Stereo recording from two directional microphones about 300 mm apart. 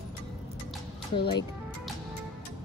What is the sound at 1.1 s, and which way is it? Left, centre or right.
Speech, centre.